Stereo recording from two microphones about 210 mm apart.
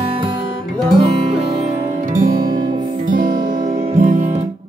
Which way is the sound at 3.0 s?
40° right (ahead or behind).